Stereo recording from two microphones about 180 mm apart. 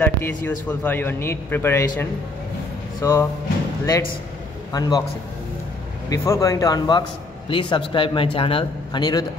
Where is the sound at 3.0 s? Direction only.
15° left (ahead or behind).